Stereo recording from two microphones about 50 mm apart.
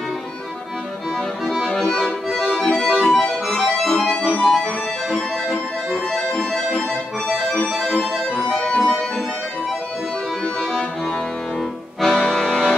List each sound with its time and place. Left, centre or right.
1.4 s music: centre
1.8 s accordion: centre
2.9 s music: centre
6.9 s accordion: centre
7.7 s organ: centre
8.5 s music: centre
8.7 s music: centre
12.0 s accordion: centre
12.4 s music: centre